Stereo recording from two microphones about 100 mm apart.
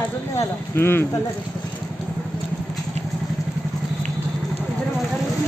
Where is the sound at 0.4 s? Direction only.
25° left (ahead or behind).